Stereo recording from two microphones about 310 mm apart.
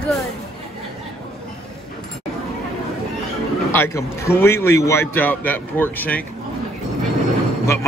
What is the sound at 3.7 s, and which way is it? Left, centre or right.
A man's voice, centre.